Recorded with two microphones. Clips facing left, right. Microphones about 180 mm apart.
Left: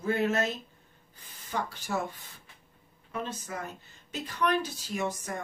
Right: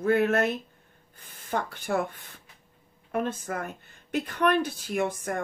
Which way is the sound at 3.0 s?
55° right (ahead or behind).